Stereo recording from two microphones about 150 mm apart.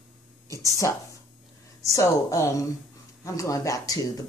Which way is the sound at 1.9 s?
20° left (ahead or behind).